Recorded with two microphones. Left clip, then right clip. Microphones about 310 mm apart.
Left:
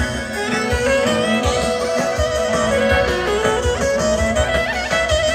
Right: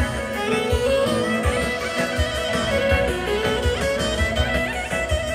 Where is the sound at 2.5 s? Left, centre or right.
Centre.